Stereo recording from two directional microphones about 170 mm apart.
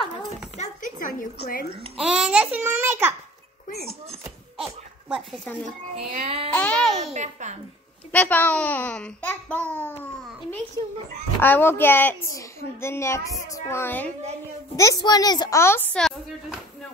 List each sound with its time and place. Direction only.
0.6 s a sound: 50° left (ahead or behind)
2.0 s babbling: 5° right (ahead or behind)
4.6 s a sound: centre (ahead or behind)
5.9 s speech: 35° right (ahead or behind)
6.5 s a child's voice: 5° left (ahead or behind)
7.0 s a child's voice: 45° right (ahead or behind)
8.1 s a child's voice: 10° left (ahead or behind)
11.3 s a child's voice: 10° left (ahead or behind)
14.8 s a woman's voice: 20° left (ahead or behind)